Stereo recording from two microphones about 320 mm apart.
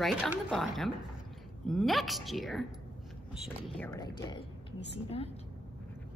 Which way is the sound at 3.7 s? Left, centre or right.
Centre.